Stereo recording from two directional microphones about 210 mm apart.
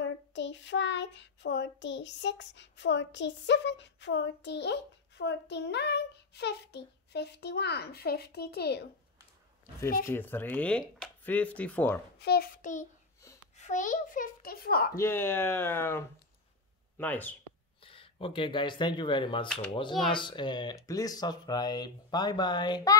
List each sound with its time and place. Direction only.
0.0 s child singing: 60° left (ahead or behind)
10.0 s speech: 10° left (ahead or behind)
12.2 s a child's voice: 50° left (ahead or behind)
15.0 s speech: 10° left (ahead or behind)
17.0 s speech: 10° left (ahead or behind)
17.8 s speech: 25° left (ahead or behind)